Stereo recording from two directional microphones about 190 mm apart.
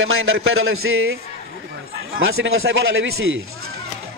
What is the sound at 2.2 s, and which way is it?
Speech, 90° right.